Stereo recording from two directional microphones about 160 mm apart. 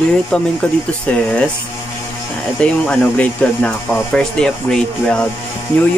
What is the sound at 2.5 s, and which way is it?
Speech, 5° left (ahead or behind).